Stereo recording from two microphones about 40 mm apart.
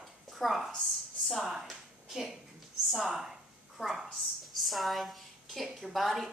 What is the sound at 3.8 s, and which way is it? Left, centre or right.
A woman's voice, centre.